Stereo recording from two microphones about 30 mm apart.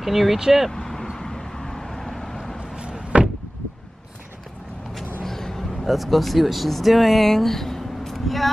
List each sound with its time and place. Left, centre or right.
0.0 s speech: centre
0.7 s vehicle: centre
3.1 s door: right
4.9 s vehicle: centre
5.4 s a sound: centre
5.9 s speech: centre